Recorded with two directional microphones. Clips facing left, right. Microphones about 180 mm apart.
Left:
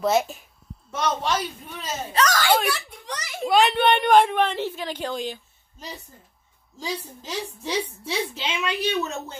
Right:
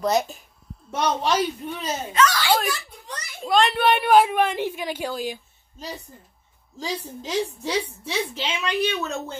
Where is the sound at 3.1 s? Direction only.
80° left.